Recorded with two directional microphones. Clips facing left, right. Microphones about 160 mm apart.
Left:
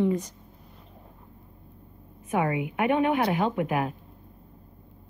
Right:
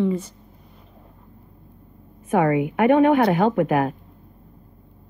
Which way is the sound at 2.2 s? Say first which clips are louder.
Right 7 dB; 55° right (ahead or behind).